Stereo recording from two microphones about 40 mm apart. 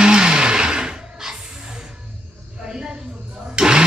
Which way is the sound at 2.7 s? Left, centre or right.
Right.